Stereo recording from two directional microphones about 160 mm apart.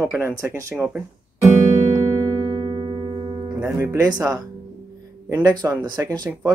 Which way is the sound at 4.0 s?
25° right (ahead or behind).